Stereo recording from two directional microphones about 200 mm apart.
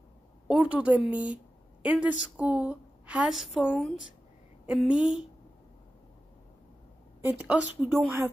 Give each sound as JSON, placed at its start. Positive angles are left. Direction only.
{"t": 0.5, "sound": "a woman's voice", "side_deg": -5}
{"t": 7.2, "sound": "a woman's voice", "side_deg": -10}